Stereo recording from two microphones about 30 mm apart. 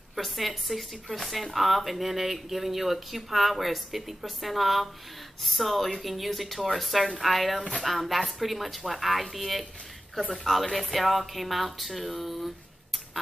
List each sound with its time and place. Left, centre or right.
0.1 s speech: centre